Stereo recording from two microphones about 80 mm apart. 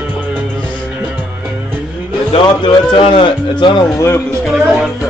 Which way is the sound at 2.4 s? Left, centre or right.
Left.